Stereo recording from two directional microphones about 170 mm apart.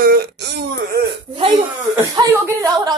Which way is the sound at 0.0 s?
60° right (ahead or behind).